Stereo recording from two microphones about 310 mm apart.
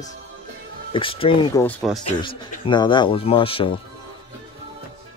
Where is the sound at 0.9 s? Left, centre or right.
Centre.